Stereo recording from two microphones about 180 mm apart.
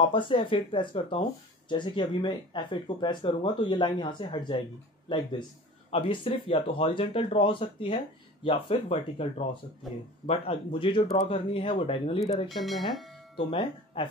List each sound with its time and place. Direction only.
0.1 s speech: 30° left (ahead or behind)
5.9 s speech: 30° left (ahead or behind)
9.8 s speech: centre (ahead or behind)
10.2 s speech: 35° left (ahead or behind)
12.4 s speech: centre (ahead or behind)
13.5 s speech: 30° left (ahead or behind)